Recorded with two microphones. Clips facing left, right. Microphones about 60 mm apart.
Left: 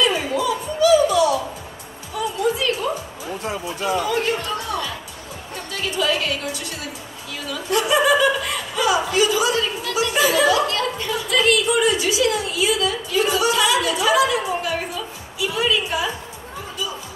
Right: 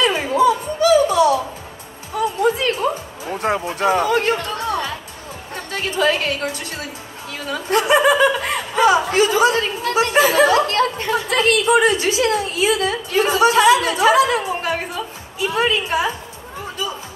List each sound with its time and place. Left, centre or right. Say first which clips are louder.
0.0 s a sound: right 5 dB; right
2.1 s music: right 4 dB; right
7.4 s a woman's voice: right 4 dB; right